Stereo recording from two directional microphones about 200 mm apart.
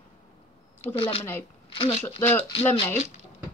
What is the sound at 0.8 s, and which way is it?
Speech, 30° left (ahead or behind).